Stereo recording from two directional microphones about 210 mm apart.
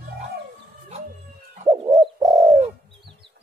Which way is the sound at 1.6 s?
20° right (ahead or behind).